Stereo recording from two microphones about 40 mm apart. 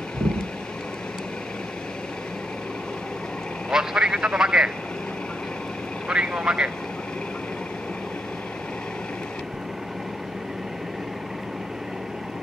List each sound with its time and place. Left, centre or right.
3.7 s vehicle: centre
6.1 s vehicle: centre